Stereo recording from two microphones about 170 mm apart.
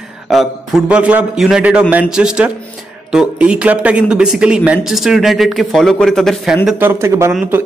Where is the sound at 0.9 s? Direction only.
10° right (ahead or behind).